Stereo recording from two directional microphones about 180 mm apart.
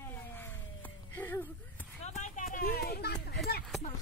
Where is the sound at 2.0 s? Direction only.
40° left (ahead or behind).